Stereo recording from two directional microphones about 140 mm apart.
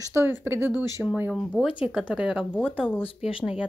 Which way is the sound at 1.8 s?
5° right (ahead or behind).